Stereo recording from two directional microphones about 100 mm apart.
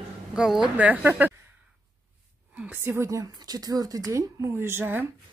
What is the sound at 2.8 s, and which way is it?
A woman's voice, 25° right (ahead or behind).